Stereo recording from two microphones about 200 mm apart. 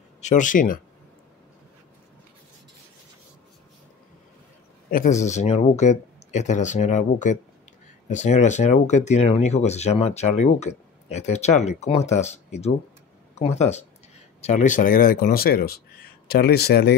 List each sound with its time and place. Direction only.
0.2 s speech: 40° left (ahead or behind)
4.9 s speech: 40° left (ahead or behind)